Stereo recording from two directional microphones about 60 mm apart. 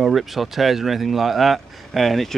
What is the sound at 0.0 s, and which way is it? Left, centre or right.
Speech, centre.